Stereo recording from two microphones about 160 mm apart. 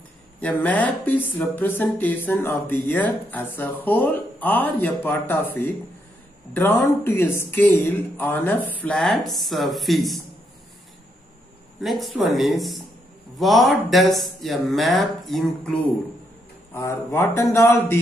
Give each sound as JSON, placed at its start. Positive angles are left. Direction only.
{"t": 0.4, "sound": "speech", "side_deg": 10}
{"t": 11.8, "sound": "speech", "side_deg": 0}
{"t": 16.7, "sound": "speech", "side_deg": 15}